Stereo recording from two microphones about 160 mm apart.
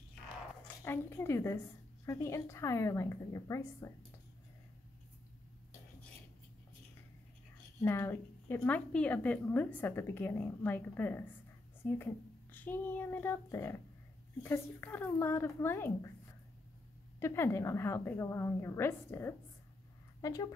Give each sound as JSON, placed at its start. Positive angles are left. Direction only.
{"t": 0.8, "sound": "a woman's voice", "side_deg": 15}
{"t": 7.8, "sound": "a woman's voice", "side_deg": 15}
{"t": 17.2, "sound": "a woman's voice", "side_deg": 15}